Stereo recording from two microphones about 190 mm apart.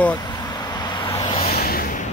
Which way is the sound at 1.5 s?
55° left (ahead or behind).